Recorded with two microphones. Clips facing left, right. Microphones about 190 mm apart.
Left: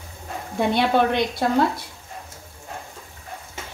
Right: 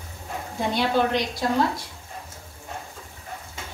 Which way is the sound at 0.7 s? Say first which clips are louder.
Left 2 dB; 60° left (ahead or behind).